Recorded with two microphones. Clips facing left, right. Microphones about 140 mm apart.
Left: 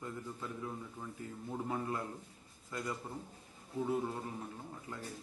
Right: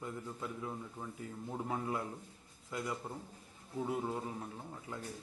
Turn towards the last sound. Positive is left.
turn(degrees=-10)  # may be behind; listen again after turning